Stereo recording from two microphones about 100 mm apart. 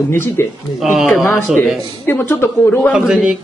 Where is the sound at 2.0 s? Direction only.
20° left (ahead or behind).